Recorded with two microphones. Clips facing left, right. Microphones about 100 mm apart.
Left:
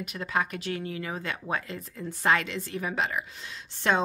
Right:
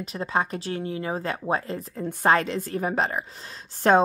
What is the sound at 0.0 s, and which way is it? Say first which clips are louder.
A woman's voice: right 3 dB; 30° right (ahead or behind).